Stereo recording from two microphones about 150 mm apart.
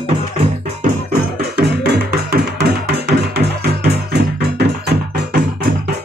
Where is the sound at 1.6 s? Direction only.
90° right.